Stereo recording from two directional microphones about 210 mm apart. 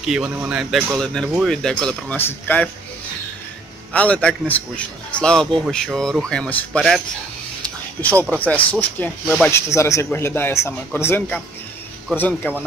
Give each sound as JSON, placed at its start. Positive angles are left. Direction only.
{"t": 0.0, "sound": "speech", "side_deg": -5}
{"t": 3.9, "sound": "speech", "side_deg": 5}
{"t": 7.6, "sound": "a sound", "side_deg": 5}
{"t": 8.5, "sound": "speech", "side_deg": 5}